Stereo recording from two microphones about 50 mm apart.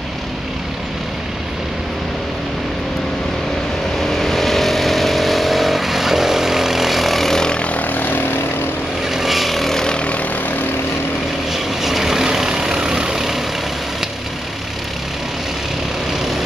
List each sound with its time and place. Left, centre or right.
4.0 s vehicle: centre
7.7 s vehicle: left
9.1 s vehicle: centre
9.8 s vehicle: left
11.5 s vehicle: centre